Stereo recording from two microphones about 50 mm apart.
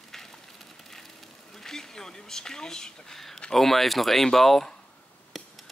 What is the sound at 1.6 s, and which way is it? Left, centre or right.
Speech, centre.